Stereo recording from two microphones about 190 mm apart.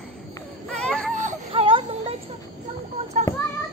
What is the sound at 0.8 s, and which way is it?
Baby cry, 5° left (ahead or behind).